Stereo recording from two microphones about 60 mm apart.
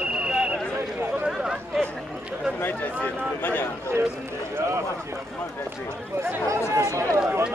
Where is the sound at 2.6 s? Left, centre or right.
Left.